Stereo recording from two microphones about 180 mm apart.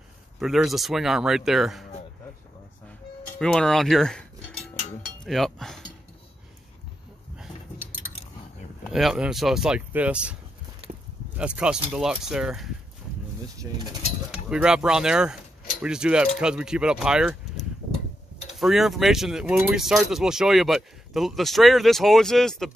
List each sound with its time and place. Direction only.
0.4 s speech: centre (ahead or behind)
3.3 s speech: 5° left (ahead or behind)
5.2 s speech: centre (ahead or behind)
8.9 s speech: 5° right (ahead or behind)
10.9 s a sound: 45° right (ahead or behind)
11.3 s speech: 5° right (ahead or behind)
13.7 s speech: 15° right (ahead or behind)
14.3 s speech: 5° right (ahead or behind)